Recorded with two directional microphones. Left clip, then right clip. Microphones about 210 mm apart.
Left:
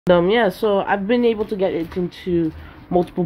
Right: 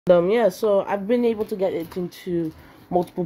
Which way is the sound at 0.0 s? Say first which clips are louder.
Left 2 dB; 5° right (ahead or behind).